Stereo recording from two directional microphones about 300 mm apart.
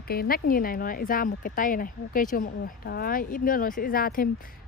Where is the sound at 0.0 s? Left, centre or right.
Left.